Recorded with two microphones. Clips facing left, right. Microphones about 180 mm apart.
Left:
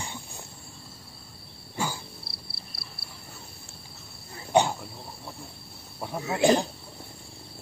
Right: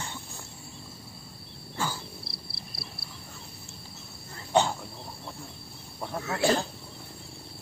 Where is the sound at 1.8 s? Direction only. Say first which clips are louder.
Left 1 dB; 15° left (ahead or behind).